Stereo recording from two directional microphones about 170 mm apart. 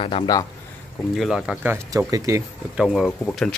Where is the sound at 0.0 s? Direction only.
30° left (ahead or behind).